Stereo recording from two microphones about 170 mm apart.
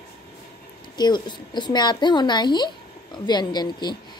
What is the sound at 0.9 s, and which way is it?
A woman's voice, 25° left (ahead or behind).